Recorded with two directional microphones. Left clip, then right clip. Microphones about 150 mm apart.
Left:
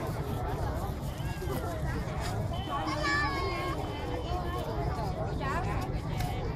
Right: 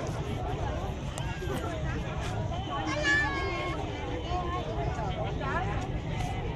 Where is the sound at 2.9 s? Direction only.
30° right (ahead or behind).